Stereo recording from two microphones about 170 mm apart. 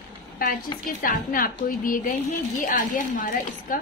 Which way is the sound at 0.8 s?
55° left (ahead or behind).